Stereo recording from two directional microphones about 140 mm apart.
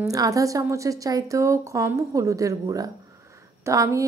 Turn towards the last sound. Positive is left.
turn(degrees=-20)  # may be behind; listen again after turning